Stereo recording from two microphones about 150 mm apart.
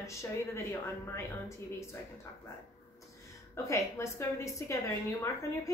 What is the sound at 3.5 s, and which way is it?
A woman's voice, 20° left (ahead or behind).